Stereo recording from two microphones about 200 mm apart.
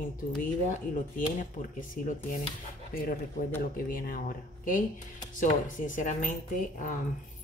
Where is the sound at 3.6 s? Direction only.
45° left (ahead or behind).